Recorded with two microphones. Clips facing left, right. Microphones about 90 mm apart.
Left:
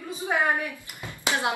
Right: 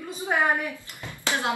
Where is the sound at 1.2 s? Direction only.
20° left (ahead or behind).